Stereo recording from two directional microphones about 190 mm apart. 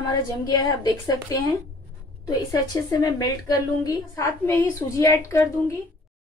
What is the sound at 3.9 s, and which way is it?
A woman's voice, 15° left (ahead or behind).